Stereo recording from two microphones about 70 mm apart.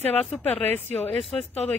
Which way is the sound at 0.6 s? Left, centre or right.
Left.